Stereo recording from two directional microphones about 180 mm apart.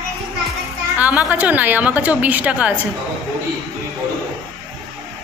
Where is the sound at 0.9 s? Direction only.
10° right (ahead or behind).